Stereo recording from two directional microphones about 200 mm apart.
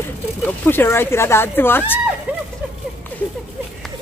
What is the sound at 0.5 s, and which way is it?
Speech, 10° left (ahead or behind).